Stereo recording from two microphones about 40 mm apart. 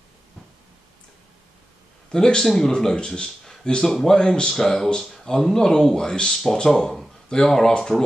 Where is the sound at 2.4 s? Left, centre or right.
Centre.